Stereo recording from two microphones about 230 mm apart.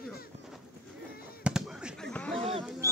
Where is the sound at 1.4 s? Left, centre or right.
Centre.